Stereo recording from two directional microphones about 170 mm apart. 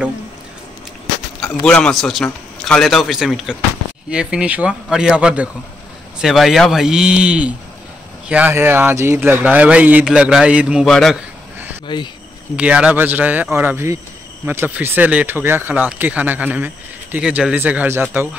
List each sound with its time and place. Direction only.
1.4 s a man's voice: 5° left (ahead or behind)
11.9 s speech: 25° left (ahead or behind)
12.5 s speech: 5° right (ahead or behind)